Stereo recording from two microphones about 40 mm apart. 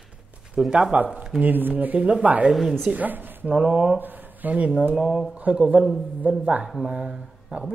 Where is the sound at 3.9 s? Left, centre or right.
Right.